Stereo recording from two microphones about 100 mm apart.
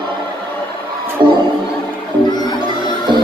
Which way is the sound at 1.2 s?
50° right (ahead or behind).